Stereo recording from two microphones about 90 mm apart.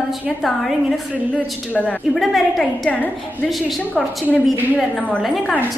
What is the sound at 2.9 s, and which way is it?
Speech, 15° left (ahead or behind).